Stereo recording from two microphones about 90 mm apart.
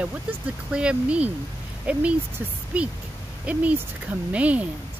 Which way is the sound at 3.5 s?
15° right (ahead or behind).